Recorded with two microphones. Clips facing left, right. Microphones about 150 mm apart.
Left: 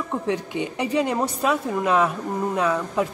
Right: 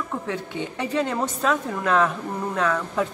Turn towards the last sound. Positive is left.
turn(degrees=10)  # may be behind; listen again after turning